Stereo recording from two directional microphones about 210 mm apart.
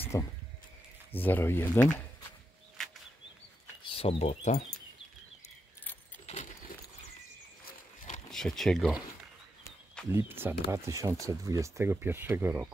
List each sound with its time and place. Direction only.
0.0 s a sound: 15° left (ahead or behind)
1.1 s speech: 10° left (ahead or behind)
3.8 s speech: 25° left (ahead or behind)
8.3 s speech: centre (ahead or behind)
10.1 s speech: 10° right (ahead or behind)